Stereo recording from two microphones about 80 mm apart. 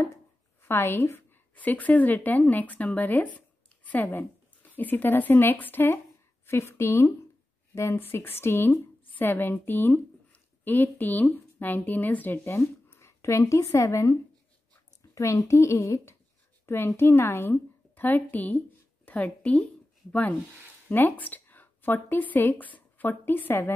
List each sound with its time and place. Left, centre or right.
0.6 s a woman's voice: left
15.1 s a woman's voice: left